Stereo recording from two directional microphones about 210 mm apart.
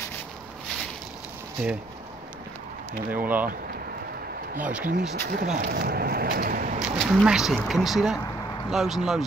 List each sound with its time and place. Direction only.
3.1 s speech: 10° right (ahead or behind)
4.6 s speech: 5° right (ahead or behind)
5.1 s speech: 45° right (ahead or behind)
6.8 s speech: centre (ahead or behind)